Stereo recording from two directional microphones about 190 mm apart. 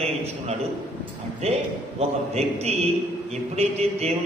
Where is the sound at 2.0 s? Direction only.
35° right (ahead or behind).